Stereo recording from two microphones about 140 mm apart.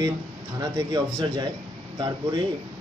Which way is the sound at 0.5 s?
30° right (ahead or behind).